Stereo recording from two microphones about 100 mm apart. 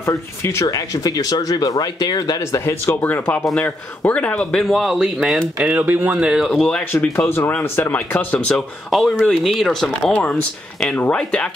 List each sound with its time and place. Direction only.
0.0 s speech: 25° left (ahead or behind); by 5.4 s 5° right (ahead or behind)
5.6 s speech: 15° right (ahead or behind); by 6.8 s 5° left (ahead or behind)
6.8 s speech: 20° left (ahead or behind)